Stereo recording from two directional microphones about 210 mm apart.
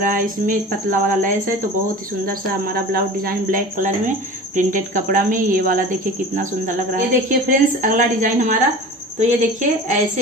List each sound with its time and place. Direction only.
0.0 s speech: 40° right (ahead or behind)